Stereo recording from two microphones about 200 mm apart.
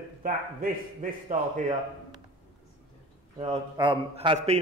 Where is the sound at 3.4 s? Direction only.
30° right (ahead or behind).